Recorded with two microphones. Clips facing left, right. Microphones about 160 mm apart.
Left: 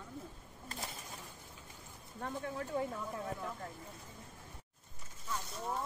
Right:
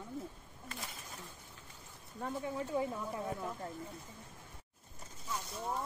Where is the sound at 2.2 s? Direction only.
10° right (ahead or behind).